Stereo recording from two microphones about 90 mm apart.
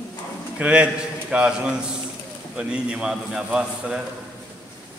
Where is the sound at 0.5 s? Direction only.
15° right (ahead or behind).